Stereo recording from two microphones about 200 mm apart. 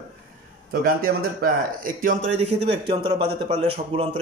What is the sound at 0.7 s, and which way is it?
A man's voice, 45° right (ahead or behind).